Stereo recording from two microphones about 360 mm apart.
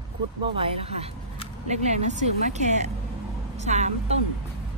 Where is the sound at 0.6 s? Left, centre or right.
Centre.